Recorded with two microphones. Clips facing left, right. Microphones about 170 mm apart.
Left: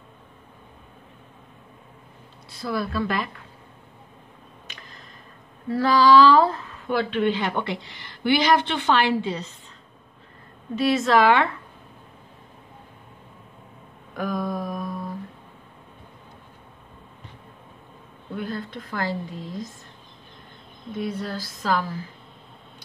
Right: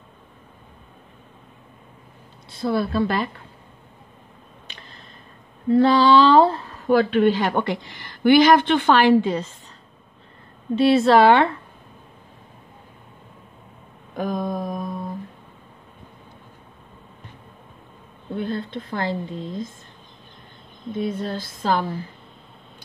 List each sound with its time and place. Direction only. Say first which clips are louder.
2.5 s a woman's voice: right 5 dB; 30° right (ahead or behind)
4.6 s a sound: right 1 dB; 30° right (ahead or behind)
5.7 s speech: right 2 dB; 25° right (ahead or behind); by 9.5 s 50° right (ahead or behind)
10.8 s speech: right 5 dB; 30° right (ahead or behind)
14.1 s a sound: right 2 dB; 20° right (ahead or behind)
18.3 s a woman's voice: right 4 dB; 25° right (ahead or behind)
20.9 s a woman's voice: right 3 dB; 25° right (ahead or behind)